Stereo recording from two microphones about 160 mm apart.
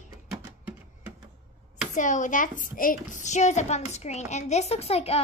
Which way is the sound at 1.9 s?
50° left (ahead or behind).